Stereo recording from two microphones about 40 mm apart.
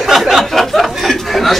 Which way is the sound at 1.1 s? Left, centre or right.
Centre.